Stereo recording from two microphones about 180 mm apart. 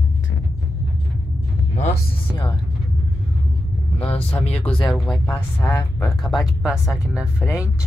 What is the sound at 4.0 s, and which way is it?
Speech, 35° left (ahead or behind).